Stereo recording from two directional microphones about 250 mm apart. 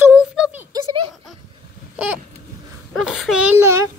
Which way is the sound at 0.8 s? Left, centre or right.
Right.